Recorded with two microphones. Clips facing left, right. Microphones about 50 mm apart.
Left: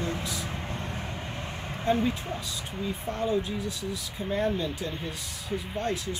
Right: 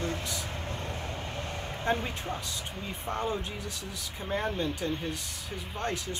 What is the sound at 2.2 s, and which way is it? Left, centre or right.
Speech, right.